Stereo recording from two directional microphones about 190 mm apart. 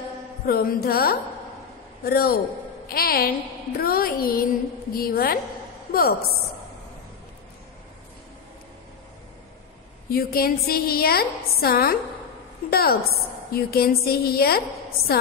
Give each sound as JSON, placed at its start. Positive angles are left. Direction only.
{"t": 0.5, "sound": "music", "side_deg": 50}
{"t": 10.0, "sound": "music", "side_deg": 55}